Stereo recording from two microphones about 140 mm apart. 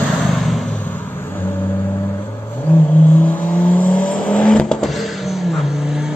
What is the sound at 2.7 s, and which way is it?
Vehicle, 10° left (ahead or behind).